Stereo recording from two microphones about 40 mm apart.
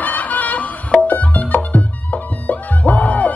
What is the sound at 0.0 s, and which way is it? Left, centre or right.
Music, left.